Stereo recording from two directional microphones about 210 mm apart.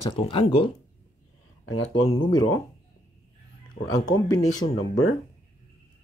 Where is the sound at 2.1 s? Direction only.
20° left (ahead or behind).